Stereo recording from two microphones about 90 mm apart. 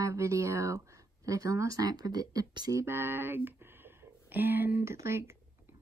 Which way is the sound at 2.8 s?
25° right (ahead or behind).